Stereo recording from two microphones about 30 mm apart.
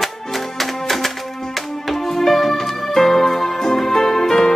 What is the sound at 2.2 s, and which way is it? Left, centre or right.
Music, centre.